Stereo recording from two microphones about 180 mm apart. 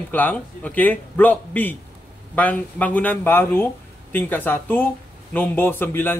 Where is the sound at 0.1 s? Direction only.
10° left (ahead or behind).